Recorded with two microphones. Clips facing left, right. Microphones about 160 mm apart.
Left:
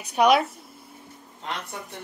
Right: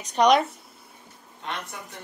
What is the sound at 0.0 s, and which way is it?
Speech, 10° left (ahead or behind).